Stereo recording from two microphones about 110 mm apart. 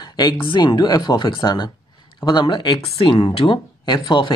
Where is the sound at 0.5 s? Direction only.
45° left (ahead or behind).